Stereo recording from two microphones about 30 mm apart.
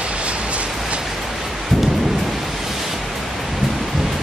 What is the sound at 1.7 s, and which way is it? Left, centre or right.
Thunder, centre.